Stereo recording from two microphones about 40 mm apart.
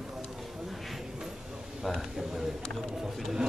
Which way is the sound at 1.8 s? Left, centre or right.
Centre.